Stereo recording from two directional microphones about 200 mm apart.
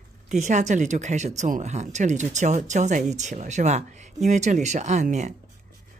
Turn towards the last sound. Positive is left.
turn(degrees=-35)  # may be behind; listen again after turning